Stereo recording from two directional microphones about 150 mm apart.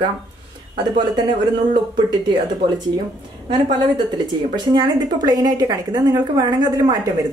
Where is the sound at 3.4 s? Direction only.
30° right (ahead or behind).